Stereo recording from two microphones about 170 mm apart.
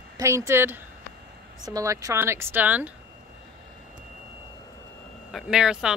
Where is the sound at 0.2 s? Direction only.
15° right (ahead or behind).